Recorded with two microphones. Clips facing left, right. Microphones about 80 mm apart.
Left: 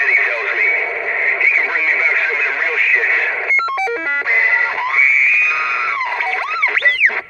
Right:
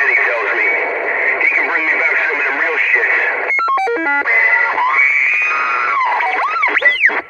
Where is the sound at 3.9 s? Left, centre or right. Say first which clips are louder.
Right 3 dB; right.